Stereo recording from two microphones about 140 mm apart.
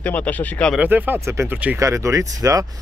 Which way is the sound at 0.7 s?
10° right (ahead or behind).